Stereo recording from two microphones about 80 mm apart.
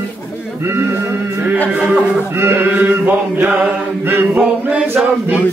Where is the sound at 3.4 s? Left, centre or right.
Right.